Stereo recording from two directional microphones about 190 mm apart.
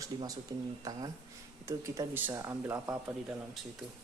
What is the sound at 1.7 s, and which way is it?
Speech, 15° right (ahead or behind).